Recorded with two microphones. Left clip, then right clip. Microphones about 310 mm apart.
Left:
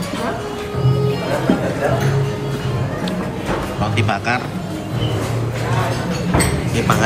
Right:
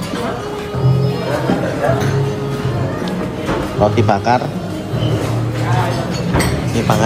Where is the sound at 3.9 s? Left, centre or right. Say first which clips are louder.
Right 5 dB; centre.